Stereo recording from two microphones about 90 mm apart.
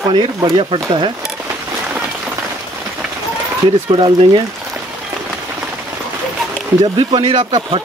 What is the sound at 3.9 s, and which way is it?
Speech, 65° right (ahead or behind).